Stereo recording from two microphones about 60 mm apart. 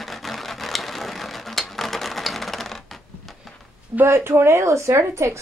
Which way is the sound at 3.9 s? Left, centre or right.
Right.